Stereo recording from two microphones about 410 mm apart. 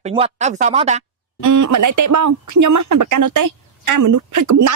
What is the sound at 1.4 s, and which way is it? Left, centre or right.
Speech, right.